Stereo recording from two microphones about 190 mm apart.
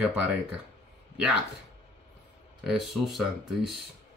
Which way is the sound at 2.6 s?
Centre (ahead or behind).